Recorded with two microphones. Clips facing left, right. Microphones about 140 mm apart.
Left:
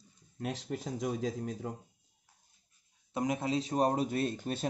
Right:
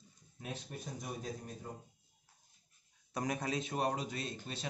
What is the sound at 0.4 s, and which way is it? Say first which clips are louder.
Speech: left 8 dB; 85° left.